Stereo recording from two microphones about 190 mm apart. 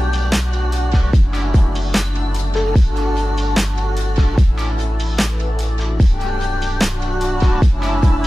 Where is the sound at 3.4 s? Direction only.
Centre (ahead or behind).